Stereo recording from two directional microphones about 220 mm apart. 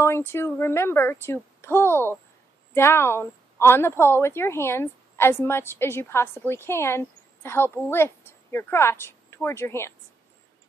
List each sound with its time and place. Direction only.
0.0 s a woman's voice: 10° left (ahead or behind)